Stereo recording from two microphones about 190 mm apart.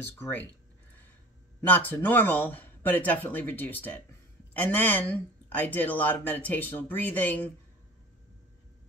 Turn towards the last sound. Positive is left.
turn(degrees=10)  # may be behind; listen again after turning